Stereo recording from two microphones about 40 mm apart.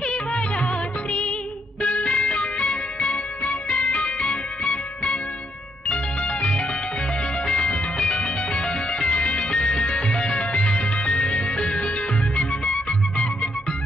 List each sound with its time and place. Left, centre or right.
0.0 s music of bollywood: left
1.8 s music: left